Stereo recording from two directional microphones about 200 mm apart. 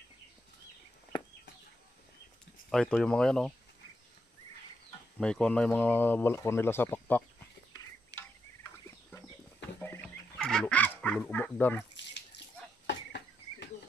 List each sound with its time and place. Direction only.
2.7 s speech: 5° left (ahead or behind)
5.2 s speech: 5° left (ahead or behind)
9.8 s fowl: 5° left (ahead or behind)
12.8 s cricket: 60° left (ahead or behind)